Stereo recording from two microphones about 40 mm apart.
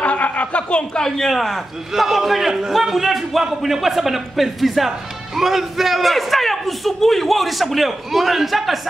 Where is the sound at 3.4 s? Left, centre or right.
Centre.